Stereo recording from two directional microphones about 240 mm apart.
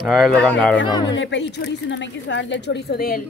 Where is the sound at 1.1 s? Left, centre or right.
Left.